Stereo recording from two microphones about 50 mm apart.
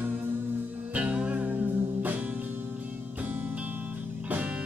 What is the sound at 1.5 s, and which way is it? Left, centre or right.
Music, right.